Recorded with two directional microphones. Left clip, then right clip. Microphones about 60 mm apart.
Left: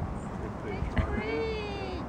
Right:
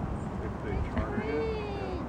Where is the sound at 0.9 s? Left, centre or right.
Left.